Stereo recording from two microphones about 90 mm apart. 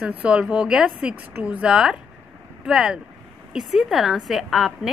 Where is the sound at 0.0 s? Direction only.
10° right (ahead or behind).